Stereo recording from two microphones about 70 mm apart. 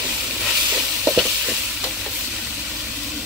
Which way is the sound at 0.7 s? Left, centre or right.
Centre.